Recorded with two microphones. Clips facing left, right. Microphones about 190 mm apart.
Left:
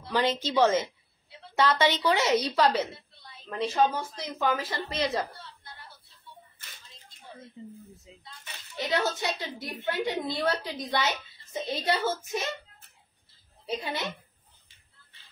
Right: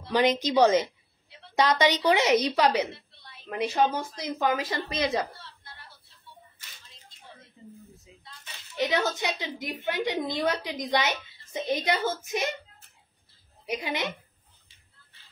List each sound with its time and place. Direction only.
0.1 s a woman's voice: 15° right (ahead or behind)
7.6 s speech: 20° left (ahead or behind)
8.7 s a woman's voice: 20° right (ahead or behind)
13.7 s a woman's voice: 15° right (ahead or behind)